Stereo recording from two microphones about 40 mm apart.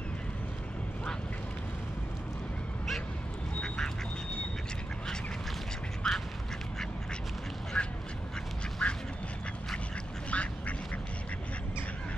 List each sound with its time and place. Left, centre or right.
3.6 s duck: centre
6.0 s duck: centre
7.7 s duck: centre
8.8 s duck: left
10.3 s duck: left